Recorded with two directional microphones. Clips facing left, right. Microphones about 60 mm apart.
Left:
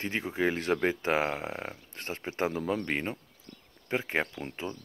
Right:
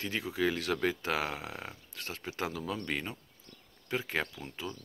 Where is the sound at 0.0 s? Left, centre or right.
Left.